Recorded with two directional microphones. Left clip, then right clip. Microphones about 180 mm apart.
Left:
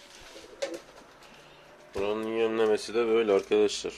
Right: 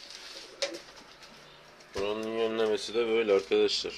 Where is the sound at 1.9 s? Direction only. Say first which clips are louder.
Left 2 dB; 5° left (ahead or behind).